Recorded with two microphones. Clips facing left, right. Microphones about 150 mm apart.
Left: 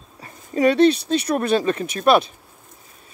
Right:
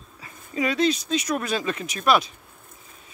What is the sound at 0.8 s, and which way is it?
Speech, 60° left (ahead or behind).